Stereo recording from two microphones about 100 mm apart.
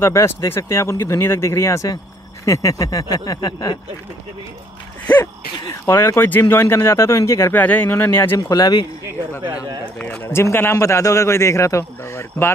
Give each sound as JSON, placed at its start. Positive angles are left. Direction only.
{"t": 0.0, "sound": "a man's voice", "side_deg": 30}
{"t": 5.2, "sound": "a man's voice", "side_deg": 30}
{"t": 8.5, "sound": "speech", "side_deg": 40}
{"t": 9.9, "sound": "speech", "side_deg": 10}
{"t": 10.2, "sound": "a man's voice", "side_deg": 25}